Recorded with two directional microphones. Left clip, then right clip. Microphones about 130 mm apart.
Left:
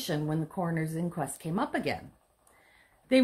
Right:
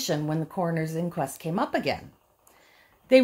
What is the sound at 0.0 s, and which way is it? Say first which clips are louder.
Speech: right 4 dB; 40° right (ahead or behind).